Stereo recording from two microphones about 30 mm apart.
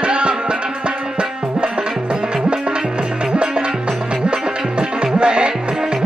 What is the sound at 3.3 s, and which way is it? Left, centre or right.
Music, right.